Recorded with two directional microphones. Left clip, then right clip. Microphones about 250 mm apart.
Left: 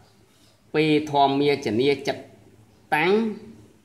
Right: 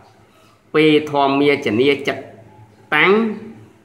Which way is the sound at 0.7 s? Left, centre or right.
Left.